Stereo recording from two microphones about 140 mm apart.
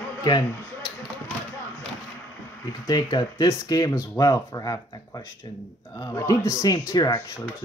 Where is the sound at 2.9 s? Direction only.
30° left (ahead or behind).